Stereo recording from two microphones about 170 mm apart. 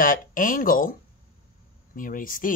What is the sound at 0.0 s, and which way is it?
Speech, 55° left (ahead or behind).